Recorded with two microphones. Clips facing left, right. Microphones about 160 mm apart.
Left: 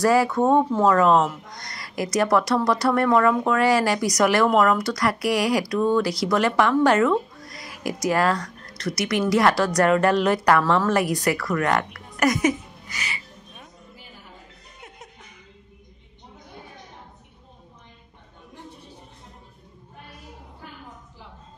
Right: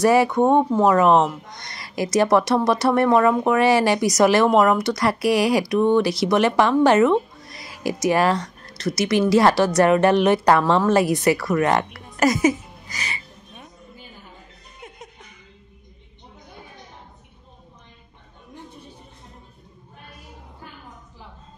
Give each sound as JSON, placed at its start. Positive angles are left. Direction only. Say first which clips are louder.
{"t": 0.0, "sound": "a woman's voice", "louder": "right 3 dB", "side_deg": -20}